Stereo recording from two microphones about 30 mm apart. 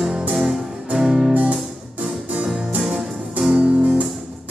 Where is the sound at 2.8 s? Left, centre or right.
Centre.